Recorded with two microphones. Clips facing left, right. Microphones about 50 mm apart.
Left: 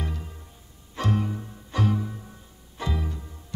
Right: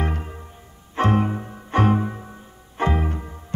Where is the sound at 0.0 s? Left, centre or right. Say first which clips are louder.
Right 8 dB; right.